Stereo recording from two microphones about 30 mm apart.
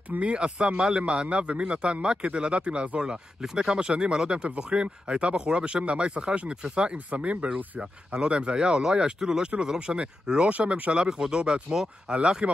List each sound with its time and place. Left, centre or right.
0.2 s speech: right
3.0 s speech: right
7.1 s speech: right
7.8 s speech: right
8.5 s speech: right
9.8 s speech: right; by 11.4 s centre
12.1 s speech: right